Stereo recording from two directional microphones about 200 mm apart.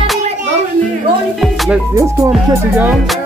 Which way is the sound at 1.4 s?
Centre (ahead or behind).